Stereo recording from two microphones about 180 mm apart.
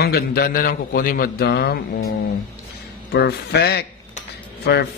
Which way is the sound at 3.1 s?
65° left (ahead or behind).